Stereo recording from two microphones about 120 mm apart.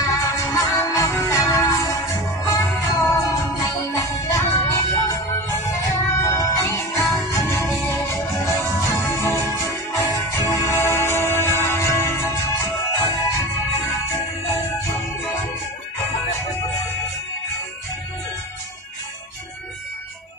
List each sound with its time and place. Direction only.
0.0 s music: 25° left (ahead or behind)